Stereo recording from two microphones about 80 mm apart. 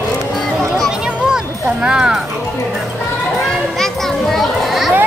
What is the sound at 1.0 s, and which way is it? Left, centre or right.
Children playing, centre.